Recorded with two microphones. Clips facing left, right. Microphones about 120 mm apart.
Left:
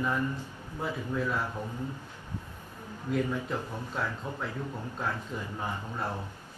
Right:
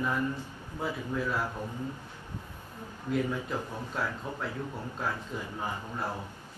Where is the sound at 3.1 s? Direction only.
Centre (ahead or behind).